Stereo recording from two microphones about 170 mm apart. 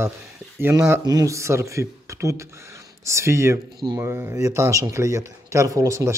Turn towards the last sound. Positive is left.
turn(degrees=-20)  # may be behind; listen again after turning